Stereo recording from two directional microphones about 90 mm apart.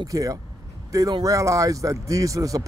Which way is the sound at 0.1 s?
35° right (ahead or behind).